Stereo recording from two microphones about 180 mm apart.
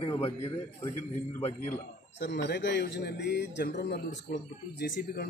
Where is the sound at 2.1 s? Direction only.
75° left (ahead or behind).